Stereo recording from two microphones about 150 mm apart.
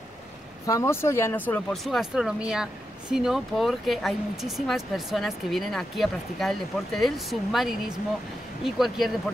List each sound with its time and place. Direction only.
0.7 s speech: 20° left (ahead or behind)
1.9 s speech: 5° right (ahead or behind)